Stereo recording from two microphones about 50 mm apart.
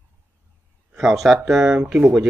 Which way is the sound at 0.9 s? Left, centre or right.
Centre.